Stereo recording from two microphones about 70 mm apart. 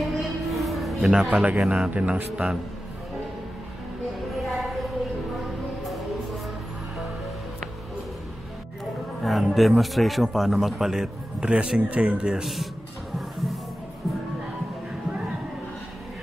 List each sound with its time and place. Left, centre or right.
0.0 s music: centre
1.6 s speech: centre
2.0 s speech: centre
4.3 s a sound: centre
5.4 s music: centre
9.2 s speech: centre